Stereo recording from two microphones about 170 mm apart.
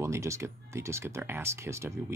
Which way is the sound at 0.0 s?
15° right (ahead or behind).